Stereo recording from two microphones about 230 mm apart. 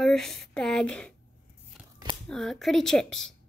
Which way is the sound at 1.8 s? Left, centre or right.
Centre.